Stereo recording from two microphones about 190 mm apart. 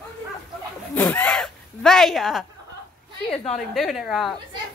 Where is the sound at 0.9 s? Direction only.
10° left (ahead or behind).